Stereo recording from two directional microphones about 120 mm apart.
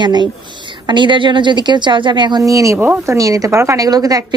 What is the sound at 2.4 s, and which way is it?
A woman's voice, 25° right (ahead or behind).